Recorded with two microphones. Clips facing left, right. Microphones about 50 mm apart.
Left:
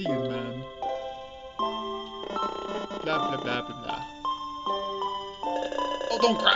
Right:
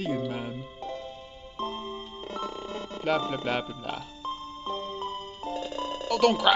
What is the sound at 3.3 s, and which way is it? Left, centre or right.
Speech, centre.